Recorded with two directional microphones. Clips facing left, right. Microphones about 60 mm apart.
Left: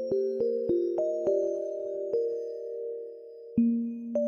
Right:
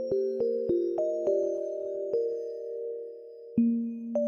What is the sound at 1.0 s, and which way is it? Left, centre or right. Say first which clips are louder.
Music: even; left.